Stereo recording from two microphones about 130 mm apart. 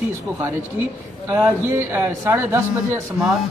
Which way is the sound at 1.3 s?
25° right (ahead or behind).